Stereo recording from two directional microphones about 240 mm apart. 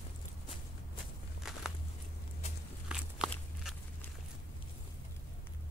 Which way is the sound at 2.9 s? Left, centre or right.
Centre.